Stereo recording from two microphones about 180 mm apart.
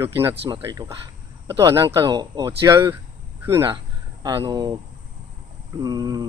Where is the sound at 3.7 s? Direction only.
15° right (ahead or behind).